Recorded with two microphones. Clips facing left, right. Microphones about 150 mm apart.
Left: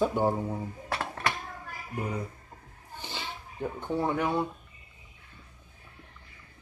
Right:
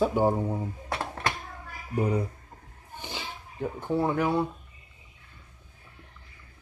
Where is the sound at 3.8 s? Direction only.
5° right (ahead or behind).